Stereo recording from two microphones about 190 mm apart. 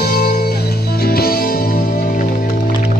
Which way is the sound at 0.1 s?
50° left (ahead or behind).